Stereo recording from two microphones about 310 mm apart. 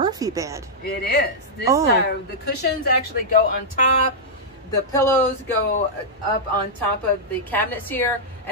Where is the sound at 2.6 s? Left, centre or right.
Left.